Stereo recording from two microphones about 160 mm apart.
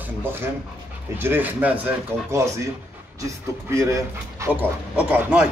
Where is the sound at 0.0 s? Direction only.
15° right (ahead or behind).